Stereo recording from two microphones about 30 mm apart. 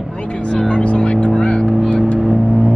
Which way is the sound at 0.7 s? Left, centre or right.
Left.